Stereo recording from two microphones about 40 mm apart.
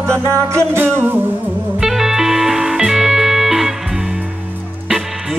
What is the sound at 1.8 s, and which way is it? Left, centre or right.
Music, centre.